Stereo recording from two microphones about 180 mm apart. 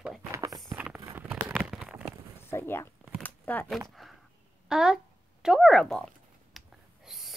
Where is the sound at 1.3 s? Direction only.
5° right (ahead or behind).